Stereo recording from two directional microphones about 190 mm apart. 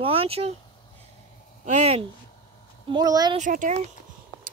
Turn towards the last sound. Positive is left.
turn(degrees=-40)  # may be behind; listen again after turning